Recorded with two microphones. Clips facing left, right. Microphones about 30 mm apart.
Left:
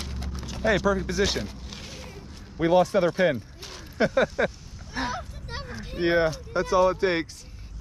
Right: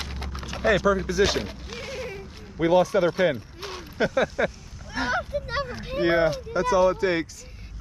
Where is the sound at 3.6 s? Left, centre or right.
Centre.